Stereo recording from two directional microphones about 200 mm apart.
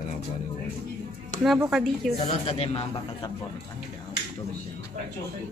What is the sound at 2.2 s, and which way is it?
Speech, 30° left (ahead or behind).